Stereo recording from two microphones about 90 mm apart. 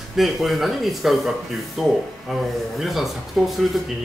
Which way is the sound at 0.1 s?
Centre (ahead or behind).